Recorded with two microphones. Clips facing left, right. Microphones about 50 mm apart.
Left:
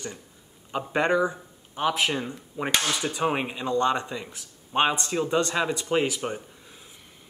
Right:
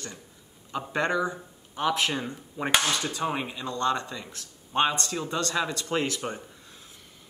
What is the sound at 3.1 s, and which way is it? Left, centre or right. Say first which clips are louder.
Speech: left 4 dB; centre.